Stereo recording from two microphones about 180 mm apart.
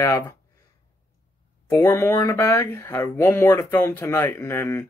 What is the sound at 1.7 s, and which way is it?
Speech, 10° left (ahead or behind).